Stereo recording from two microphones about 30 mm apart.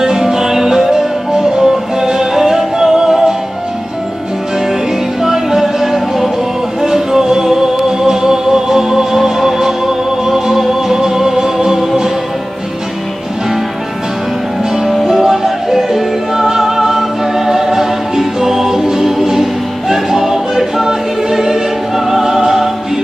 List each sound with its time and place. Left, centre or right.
0.0 s music: centre
5.2 s music: centre
6.8 s music: centre
15.0 s music: centre
19.9 s choir: centre